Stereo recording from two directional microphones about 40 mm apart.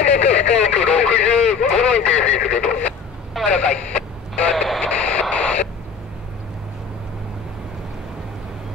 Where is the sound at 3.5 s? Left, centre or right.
Left.